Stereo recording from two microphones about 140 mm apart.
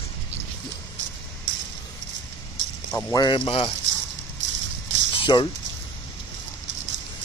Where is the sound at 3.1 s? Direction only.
35° left (ahead or behind).